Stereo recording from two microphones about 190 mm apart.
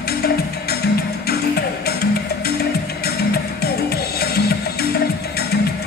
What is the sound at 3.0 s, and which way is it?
Music, 55° left (ahead or behind).